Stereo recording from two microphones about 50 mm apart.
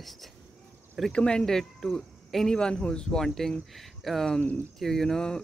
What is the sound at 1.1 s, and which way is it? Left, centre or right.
Speech, centre.